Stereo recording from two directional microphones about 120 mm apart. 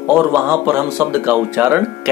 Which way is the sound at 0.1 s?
15° right (ahead or behind).